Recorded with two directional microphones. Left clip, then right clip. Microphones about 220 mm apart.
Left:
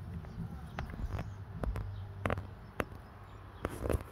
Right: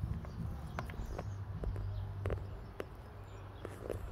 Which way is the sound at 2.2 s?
40° left (ahead or behind).